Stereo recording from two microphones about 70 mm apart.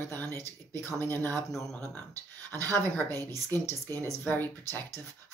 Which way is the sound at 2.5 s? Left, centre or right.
Left.